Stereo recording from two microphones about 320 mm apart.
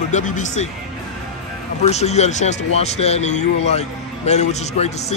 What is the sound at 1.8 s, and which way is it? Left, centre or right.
Speech, centre.